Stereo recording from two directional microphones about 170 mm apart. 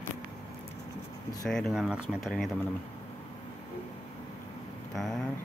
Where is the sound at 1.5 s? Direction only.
Centre (ahead or behind).